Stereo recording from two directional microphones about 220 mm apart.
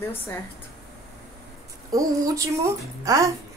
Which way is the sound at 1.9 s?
15° right (ahead or behind).